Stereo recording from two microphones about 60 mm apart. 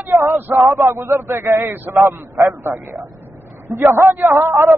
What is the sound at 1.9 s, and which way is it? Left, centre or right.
Speech, right.